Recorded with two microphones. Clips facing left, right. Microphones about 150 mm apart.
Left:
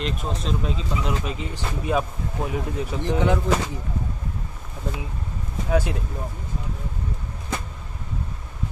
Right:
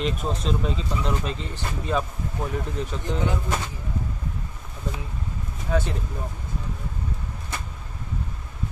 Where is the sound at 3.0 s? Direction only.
80° left.